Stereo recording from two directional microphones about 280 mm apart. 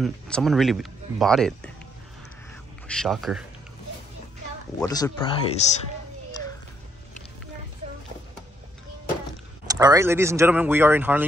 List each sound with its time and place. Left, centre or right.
0.0 s speech: centre
2.9 s speech: centre
4.8 s speech: centre
9.7 s speech: centre